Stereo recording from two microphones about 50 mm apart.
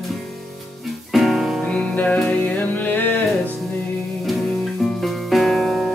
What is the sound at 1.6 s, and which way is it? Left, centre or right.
Music, left.